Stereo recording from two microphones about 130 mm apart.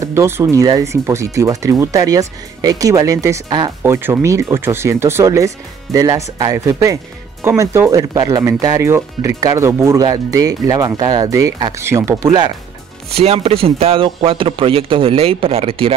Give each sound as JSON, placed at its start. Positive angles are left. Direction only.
{"t": 0.0, "sound": "speech", "side_deg": -20}
{"t": 12.3, "sound": "speech", "side_deg": -35}
{"t": 13.1, "sound": "a man's voice", "side_deg": -50}